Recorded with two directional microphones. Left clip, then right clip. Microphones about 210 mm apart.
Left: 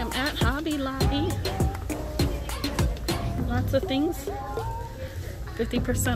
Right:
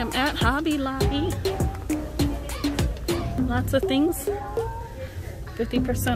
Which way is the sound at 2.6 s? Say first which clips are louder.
Right 4 dB; 5° left (ahead or behind).